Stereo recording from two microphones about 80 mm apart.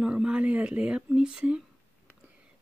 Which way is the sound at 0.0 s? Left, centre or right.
Centre.